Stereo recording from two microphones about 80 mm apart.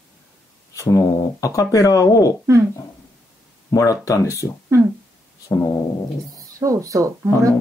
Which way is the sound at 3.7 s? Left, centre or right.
Left.